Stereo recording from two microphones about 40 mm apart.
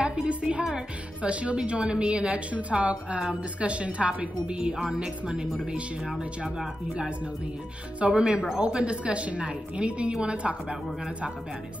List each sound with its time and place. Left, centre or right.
0.0 s a woman's voice: right
6.0 s speech: centre
8.1 s a woman's voice: centre